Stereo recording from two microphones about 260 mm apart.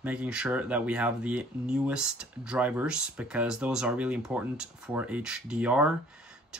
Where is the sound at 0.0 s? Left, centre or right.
Centre.